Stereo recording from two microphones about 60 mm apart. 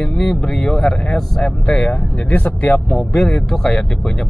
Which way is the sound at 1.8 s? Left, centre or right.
Left.